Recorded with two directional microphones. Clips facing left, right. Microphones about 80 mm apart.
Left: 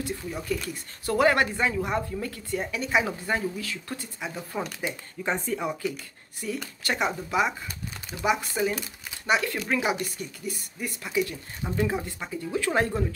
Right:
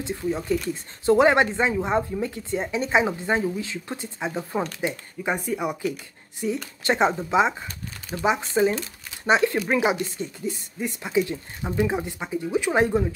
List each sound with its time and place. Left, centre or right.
0.0 s speech: right
5.2 s speech: centre
6.8 s speech: right